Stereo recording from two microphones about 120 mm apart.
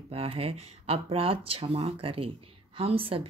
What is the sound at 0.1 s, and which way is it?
A woman's voice, 55° right (ahead or behind).